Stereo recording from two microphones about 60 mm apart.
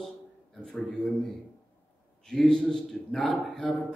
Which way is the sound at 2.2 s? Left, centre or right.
Centre.